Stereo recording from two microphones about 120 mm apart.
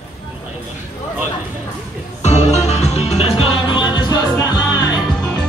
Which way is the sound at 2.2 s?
65° left (ahead or behind).